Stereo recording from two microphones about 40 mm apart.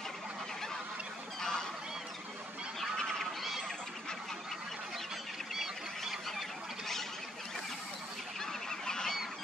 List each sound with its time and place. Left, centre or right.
1.4 s honk: centre
2.8 s goose: centre
5.5 s goose: centre
8.4 s goose: centre